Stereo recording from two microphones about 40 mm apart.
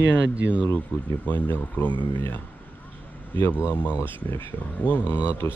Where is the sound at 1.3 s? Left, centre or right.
Left.